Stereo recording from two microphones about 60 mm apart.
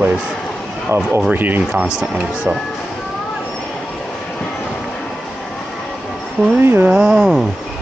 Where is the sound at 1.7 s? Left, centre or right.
Centre.